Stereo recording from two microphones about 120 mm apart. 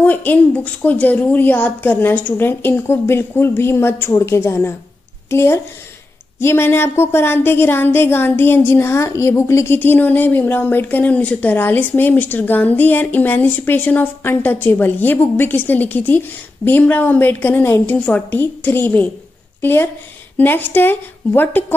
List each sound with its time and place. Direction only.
0.0 s a woman's voice: 15° left (ahead or behind)